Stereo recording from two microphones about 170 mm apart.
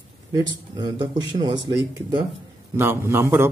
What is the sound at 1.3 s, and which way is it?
Speech, 25° right (ahead or behind).